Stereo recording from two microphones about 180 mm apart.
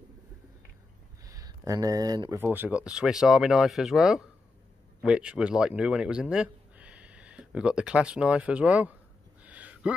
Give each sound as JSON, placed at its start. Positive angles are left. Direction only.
{"t": 1.2, "sound": "speech", "side_deg": -20}
{"t": 2.4, "sound": "speech", "side_deg": -10}
{"t": 9.4, "sound": "a sound", "side_deg": -10}